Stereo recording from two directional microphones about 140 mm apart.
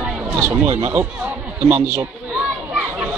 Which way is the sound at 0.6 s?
50° right (ahead or behind).